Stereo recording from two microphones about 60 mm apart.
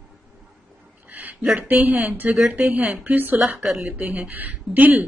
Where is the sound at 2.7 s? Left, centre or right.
Right.